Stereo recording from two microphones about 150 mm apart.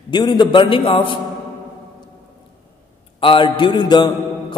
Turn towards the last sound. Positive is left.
turn(degrees=30)  # may be behind; listen again after turning